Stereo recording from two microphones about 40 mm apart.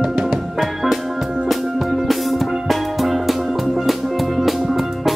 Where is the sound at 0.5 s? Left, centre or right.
Centre.